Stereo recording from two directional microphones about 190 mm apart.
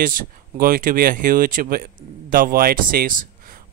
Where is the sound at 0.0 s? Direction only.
50° right (ahead or behind).